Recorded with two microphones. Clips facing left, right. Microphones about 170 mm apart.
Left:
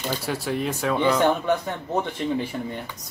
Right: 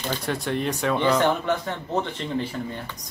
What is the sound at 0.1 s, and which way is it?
Speech, 5° left (ahead or behind).